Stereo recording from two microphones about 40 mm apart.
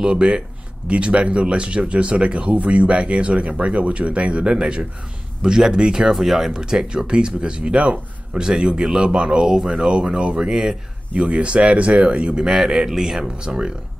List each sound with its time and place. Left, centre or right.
0.0 s speech: right
6.1 s speech: centre
11.1 s speech: right
12.4 s speech: centre